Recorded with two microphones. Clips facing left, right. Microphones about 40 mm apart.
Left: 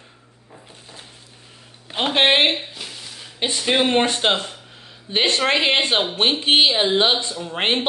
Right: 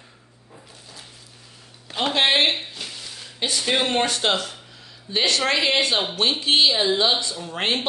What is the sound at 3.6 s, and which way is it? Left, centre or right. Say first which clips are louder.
A man's voice: left 4 dB; centre.